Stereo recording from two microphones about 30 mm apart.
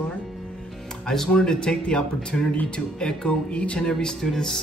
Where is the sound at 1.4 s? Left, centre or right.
Left.